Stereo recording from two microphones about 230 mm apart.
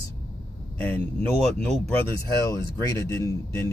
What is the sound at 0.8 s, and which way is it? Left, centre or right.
Speech, centre.